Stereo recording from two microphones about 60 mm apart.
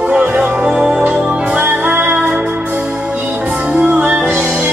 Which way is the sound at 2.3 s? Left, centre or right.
Centre.